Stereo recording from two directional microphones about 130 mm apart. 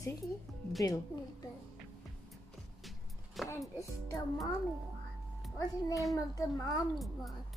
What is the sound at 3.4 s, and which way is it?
Music, centre (ahead or behind).